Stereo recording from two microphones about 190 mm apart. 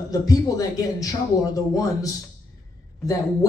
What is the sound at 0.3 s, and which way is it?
Speech, 20° left (ahead or behind).